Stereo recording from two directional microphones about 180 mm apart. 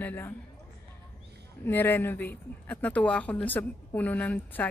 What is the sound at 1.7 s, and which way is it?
Speech, 10° left (ahead or behind).